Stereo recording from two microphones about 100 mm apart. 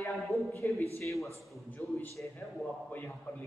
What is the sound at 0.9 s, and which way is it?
A man's voice, 30° left (ahead or behind).